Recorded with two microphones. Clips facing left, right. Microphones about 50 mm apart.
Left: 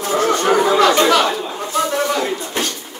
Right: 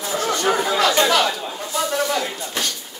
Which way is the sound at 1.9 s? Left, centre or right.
Left.